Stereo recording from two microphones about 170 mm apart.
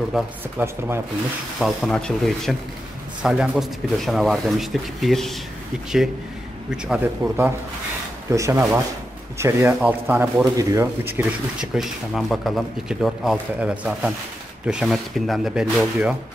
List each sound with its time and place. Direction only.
0.1 s speech: centre (ahead or behind)
0.6 s speech: 15° right (ahead or behind)
1.6 s speech: centre (ahead or behind)
6.7 s speech: 10° right (ahead or behind)
11.7 s speech: centre (ahead or behind)